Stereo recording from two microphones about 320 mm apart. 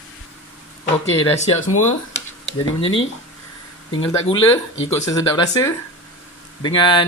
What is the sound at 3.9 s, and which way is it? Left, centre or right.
Speech, centre.